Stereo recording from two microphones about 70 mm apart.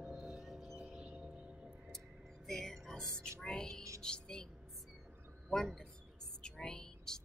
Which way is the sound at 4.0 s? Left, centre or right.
Centre.